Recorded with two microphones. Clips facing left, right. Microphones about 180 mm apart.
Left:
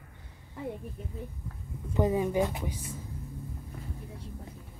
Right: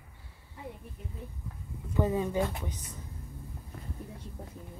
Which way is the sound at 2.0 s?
15° left (ahead or behind).